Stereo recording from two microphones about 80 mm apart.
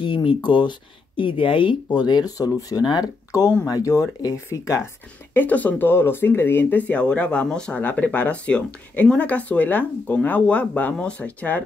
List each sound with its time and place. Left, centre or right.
0.0 s speech: left
2.3 s speech: left
3.3 s speech: left
5.3 s speech: left